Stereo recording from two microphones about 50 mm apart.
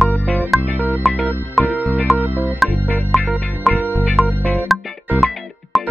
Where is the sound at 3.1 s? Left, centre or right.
Centre.